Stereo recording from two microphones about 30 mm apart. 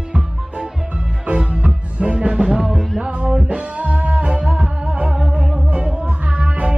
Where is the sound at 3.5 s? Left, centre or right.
Right.